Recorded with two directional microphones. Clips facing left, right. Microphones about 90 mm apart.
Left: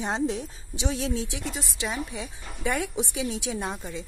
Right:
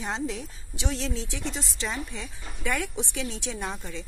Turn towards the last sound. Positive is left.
turn(degrees=15)  # may be behind; listen again after turning